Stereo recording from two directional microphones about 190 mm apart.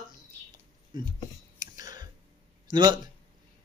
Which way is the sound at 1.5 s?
20° right (ahead or behind).